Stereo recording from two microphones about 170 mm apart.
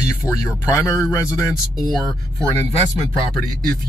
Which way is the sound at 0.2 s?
Centre (ahead or behind).